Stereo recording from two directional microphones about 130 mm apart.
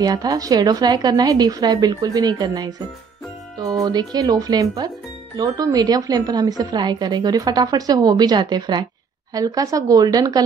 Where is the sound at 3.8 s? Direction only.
30° right (ahead or behind).